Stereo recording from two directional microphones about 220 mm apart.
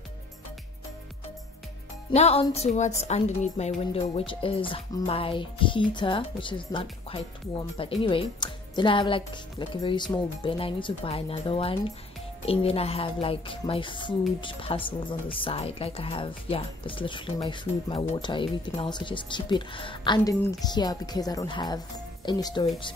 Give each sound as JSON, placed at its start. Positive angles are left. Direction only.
{"t": 2.0, "sound": "a woman's voice", "side_deg": 30}